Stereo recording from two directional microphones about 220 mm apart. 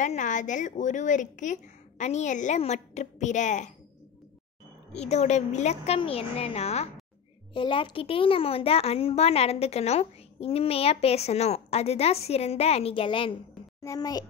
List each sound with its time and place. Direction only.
0.0 s a woman's voice: 35° left (ahead or behind)
4.9 s a child's voice: 30° left (ahead or behind)